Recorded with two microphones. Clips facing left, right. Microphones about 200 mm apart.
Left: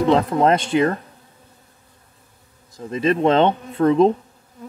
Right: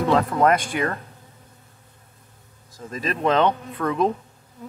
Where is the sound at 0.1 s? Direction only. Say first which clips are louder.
Left 1 dB; 25° left (ahead or behind).